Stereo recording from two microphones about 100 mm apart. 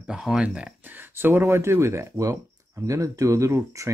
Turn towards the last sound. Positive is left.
turn(degrees=-30)  # may be behind; listen again after turning